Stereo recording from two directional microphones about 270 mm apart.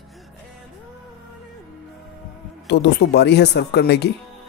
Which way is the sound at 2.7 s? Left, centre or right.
Left.